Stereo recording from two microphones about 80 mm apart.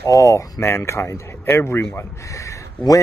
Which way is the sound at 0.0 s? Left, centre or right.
Left.